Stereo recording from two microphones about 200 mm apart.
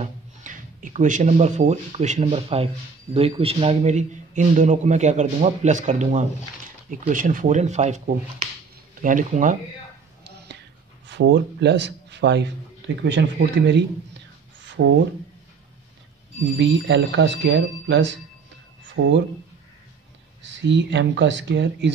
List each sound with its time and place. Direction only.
0.0 s a man's voice: 40° right (ahead or behind)
9.0 s a man's voice: 40° right (ahead or behind)
11.1 s a man's voice: 60° right (ahead or behind)
14.6 s a sound: 65° right (ahead or behind)
16.5 s a man's voice: 60° right (ahead or behind)
20.4 s a man's voice: 65° right (ahead or behind)